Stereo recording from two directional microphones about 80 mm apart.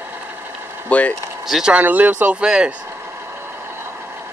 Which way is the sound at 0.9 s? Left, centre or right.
Centre.